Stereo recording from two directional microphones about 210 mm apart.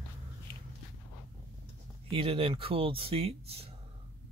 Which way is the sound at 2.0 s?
25° right (ahead or behind).